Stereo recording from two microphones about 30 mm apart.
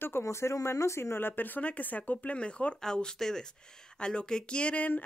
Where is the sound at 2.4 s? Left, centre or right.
Left.